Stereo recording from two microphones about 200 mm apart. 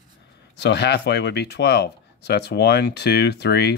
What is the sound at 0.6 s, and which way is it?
Speech, 60° left (ahead or behind).